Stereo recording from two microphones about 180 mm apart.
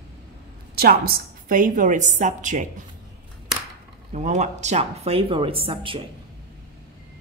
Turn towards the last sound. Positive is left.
turn(degrees=-30)  # may be behind; listen again after turning